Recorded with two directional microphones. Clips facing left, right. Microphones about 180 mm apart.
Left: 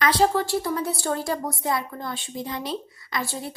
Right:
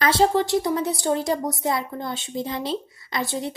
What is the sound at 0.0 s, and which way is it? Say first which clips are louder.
Speech: right 2 dB; 25° right (ahead or behind).